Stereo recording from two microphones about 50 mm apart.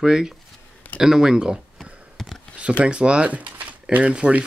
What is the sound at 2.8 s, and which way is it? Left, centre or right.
Speech, centre.